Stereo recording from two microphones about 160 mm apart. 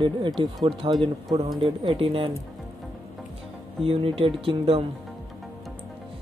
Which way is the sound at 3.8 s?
35° right (ahead or behind).